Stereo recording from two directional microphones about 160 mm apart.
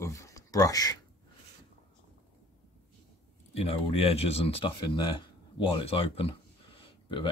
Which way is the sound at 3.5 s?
40° left (ahead or behind).